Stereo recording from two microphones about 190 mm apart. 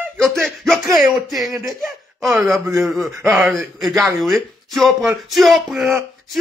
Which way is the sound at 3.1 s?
15° right (ahead or behind).